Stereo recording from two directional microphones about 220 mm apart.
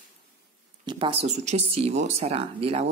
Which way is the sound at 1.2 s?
30° right (ahead or behind).